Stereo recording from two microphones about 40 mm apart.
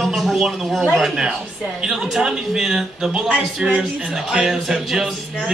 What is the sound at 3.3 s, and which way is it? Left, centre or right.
Speech, right.